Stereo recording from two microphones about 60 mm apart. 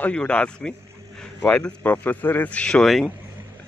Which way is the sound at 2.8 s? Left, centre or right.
Centre.